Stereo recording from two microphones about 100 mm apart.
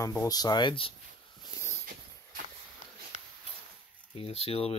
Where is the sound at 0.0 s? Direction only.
30° left (ahead or behind); by 0.9 s 60° left (ahead or behind).